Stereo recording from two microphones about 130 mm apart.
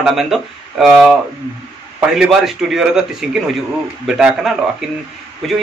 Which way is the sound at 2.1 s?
5° right (ahead or behind).